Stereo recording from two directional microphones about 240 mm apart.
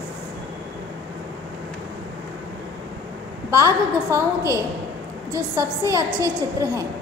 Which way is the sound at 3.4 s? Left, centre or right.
Centre.